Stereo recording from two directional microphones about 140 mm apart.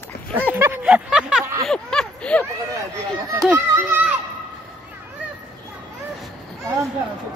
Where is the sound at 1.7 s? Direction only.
5° left (ahead or behind).